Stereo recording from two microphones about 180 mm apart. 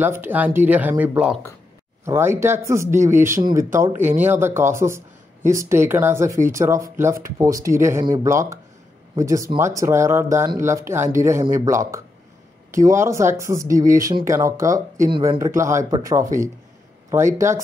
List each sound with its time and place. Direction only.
0.0 s speech: 10° right (ahead or behind)